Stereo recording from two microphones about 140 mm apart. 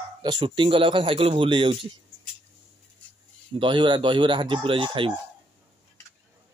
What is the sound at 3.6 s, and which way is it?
A man's voice, 35° right (ahead or behind).